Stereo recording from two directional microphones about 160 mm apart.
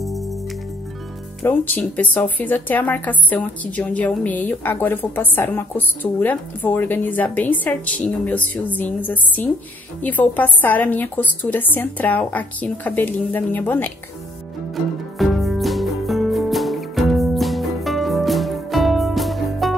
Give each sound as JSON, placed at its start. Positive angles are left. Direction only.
{"t": 1.4, "sound": "speech", "side_deg": 10}
{"t": 15.1, "sound": "music", "side_deg": 0}